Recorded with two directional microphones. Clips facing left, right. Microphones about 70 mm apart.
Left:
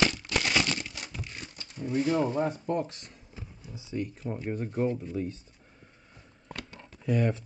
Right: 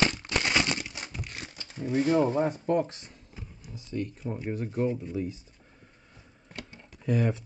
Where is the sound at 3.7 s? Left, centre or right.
Centre.